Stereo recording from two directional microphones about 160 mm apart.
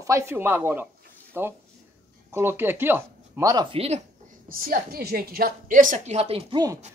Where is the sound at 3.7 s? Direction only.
40° right (ahead or behind).